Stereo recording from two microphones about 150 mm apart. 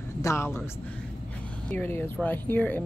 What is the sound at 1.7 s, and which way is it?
Speech, 15° left (ahead or behind).